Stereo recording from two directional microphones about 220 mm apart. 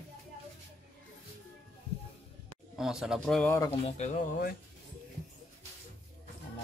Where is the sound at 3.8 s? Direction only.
30° left (ahead or behind).